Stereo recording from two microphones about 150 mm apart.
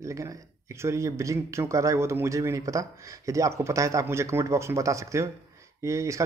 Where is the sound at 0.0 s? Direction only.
20° right (ahead or behind).